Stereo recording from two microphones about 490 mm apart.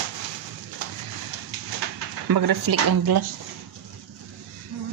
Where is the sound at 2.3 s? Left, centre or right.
Right.